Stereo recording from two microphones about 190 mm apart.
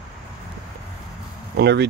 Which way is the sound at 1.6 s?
60° right (ahead or behind).